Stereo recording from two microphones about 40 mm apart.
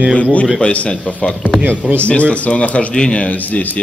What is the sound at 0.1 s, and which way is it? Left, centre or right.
Speech, left.